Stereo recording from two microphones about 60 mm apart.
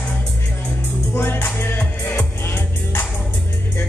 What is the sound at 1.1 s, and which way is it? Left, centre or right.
Music, left.